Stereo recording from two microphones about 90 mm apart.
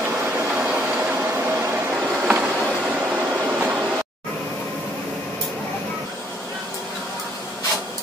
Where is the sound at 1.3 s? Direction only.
25° right (ahead or behind).